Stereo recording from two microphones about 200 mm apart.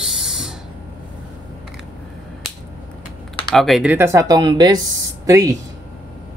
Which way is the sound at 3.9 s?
15° right (ahead or behind).